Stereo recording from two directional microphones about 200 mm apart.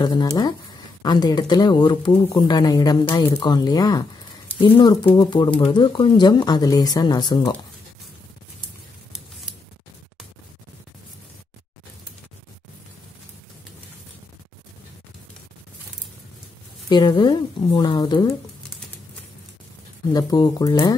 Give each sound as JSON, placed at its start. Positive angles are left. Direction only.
{"t": 0.0, "sound": "speech", "side_deg": 20}
{"t": 16.9, "sound": "speech", "side_deg": 20}
{"t": 20.1, "sound": "speech", "side_deg": 20}